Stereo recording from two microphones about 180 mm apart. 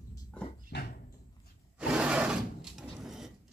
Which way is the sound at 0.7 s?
60° left (ahead or behind).